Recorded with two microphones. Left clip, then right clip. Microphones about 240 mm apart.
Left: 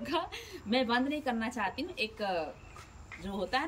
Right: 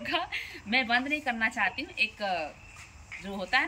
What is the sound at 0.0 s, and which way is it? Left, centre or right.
A woman's voice, centre.